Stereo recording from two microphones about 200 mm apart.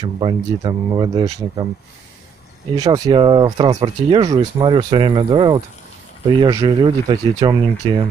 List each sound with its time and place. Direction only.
0.0 s speech: 25° right (ahead or behind)
2.8 s speech: 20° right (ahead or behind)